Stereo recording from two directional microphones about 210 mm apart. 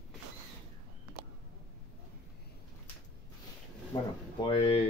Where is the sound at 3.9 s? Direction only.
20° left (ahead or behind).